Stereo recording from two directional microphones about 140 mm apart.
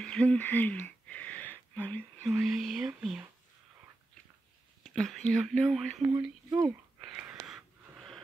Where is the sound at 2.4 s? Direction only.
5° right (ahead or behind).